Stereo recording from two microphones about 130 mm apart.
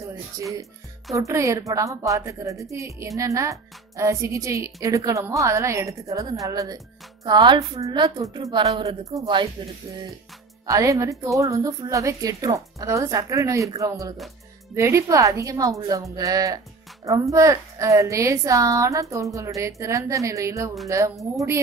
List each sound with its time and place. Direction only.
1.1 s a woman's voice: 25° right (ahead or behind)
10.7 s a woman's voice: 25° right (ahead or behind)